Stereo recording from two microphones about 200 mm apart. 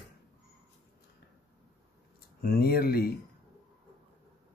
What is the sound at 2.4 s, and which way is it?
Speech, 50° left (ahead or behind).